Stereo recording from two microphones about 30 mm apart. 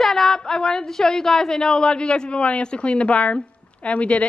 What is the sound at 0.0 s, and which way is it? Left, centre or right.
A woman's voice, centre.